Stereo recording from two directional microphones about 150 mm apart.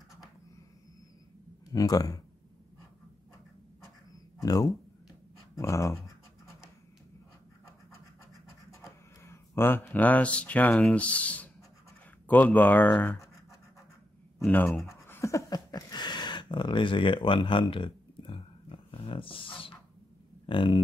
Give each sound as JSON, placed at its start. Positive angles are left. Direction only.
{"t": 1.7, "sound": "speech", "side_deg": 25}
{"t": 4.4, "sound": "speech", "side_deg": 25}
{"t": 9.2, "sound": "speech", "side_deg": 15}
{"t": 14.4, "sound": "speech", "side_deg": 10}
{"t": 15.0, "sound": "a sound", "side_deg": 20}
{"t": 20.4, "sound": "speech", "side_deg": 35}